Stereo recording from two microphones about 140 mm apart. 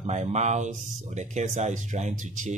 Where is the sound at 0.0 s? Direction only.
55° right (ahead or behind).